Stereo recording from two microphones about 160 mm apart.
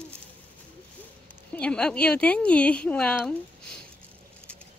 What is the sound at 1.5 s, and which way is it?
A woman's voice, 5° left (ahead or behind).